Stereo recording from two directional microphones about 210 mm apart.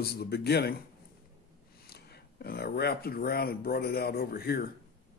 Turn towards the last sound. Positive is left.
turn(degrees=45)  # may be behind; listen again after turning